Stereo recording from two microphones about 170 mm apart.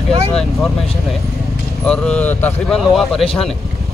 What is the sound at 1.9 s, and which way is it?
Speech, 5° left (ahead or behind).